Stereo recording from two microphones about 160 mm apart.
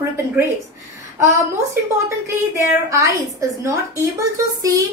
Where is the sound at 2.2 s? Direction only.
20° right (ahead or behind).